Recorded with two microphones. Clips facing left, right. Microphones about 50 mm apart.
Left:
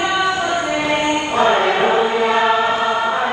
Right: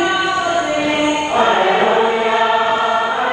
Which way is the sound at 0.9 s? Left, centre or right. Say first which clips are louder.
Right 2 dB; right.